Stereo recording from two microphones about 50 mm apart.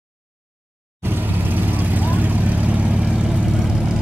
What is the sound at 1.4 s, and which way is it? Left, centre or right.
Vehicle, right.